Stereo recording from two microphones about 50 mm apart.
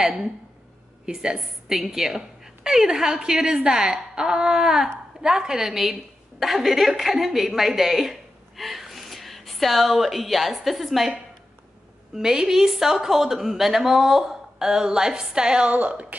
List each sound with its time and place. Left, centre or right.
0.0 s a woman's voice: centre
15.7 s a woman's voice: right